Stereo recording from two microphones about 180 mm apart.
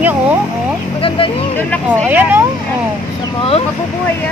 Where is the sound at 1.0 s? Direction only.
30° left (ahead or behind).